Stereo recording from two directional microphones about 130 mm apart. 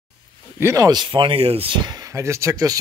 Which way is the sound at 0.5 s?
20° right (ahead or behind).